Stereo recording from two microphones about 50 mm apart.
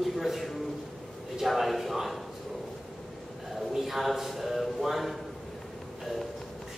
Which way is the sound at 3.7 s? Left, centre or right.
Centre.